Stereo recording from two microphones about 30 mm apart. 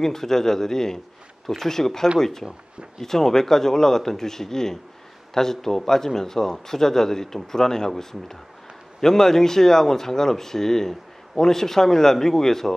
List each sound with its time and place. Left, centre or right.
0.0 s speech: centre